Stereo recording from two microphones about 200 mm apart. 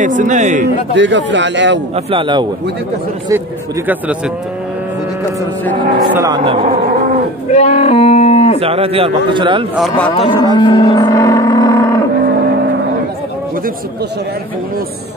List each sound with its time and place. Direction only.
0.2 s speech: 40° right (ahead or behind)
0.9 s speech: 65° right (ahead or behind)
2.0 s a man's voice: 25° right (ahead or behind)
3.3 s speech: 10° right (ahead or behind)
6.1 s a man's voice: 20° right (ahead or behind)
7.5 s livestock: 30° left (ahead or behind)
8.5 s a man's voice: 30° right (ahead or behind)
9.8 s speech: 5° left (ahead or behind)
10.1 s roaring cats: 25° left (ahead or behind)
10.6 s livestock: 25° left (ahead or behind)